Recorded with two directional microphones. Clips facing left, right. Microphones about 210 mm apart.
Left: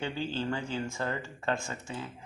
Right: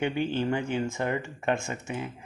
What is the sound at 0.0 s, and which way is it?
Speech, 20° right (ahead or behind).